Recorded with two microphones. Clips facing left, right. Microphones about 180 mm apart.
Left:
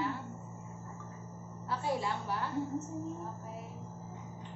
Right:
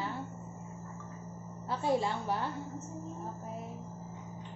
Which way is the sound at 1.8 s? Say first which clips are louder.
Right 5 dB; 25° right (ahead or behind).